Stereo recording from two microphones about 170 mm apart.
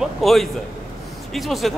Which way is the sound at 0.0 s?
Centre (ahead or behind).